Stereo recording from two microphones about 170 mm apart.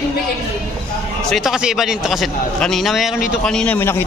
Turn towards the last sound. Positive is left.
turn(degrees=15)  # may be behind; listen again after turning